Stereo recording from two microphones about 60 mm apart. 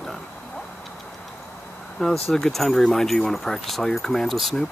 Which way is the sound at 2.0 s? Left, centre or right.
Centre.